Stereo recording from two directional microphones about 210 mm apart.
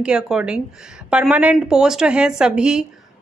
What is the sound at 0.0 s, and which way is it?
Speech, 5° right (ahead or behind).